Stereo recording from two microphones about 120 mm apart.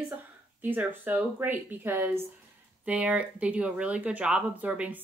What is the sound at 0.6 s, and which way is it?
Speech, 15° right (ahead or behind).